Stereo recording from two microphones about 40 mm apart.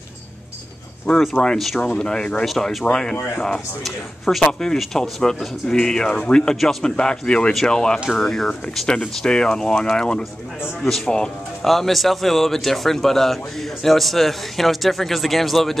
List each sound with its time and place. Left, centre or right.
1.4 s speech: centre
4.7 s speech: centre
5.2 s speech: centre
6.5 s speech: centre
6.8 s speech: left
11.6 s speech: centre